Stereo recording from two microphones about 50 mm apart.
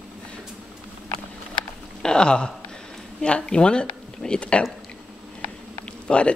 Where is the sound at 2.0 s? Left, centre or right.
Centre.